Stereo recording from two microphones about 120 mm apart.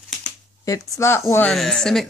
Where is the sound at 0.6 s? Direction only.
25° left (ahead or behind).